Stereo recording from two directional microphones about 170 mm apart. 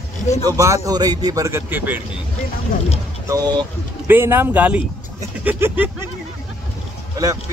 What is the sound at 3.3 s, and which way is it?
A man's voice, 25° right (ahead or behind).